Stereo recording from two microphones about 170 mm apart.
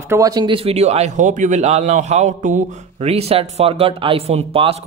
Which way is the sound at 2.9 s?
35° right (ahead or behind).